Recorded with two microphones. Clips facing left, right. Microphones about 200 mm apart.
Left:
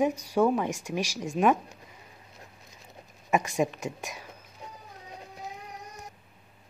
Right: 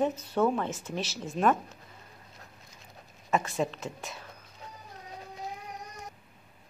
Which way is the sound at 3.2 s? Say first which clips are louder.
Left 3 dB; 15° left (ahead or behind).